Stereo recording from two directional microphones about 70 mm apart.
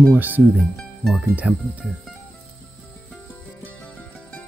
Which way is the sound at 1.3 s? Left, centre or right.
Right.